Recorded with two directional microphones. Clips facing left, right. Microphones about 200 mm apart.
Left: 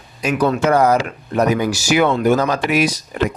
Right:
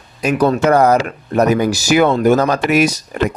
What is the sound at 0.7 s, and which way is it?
Speech, 40° right (ahead or behind).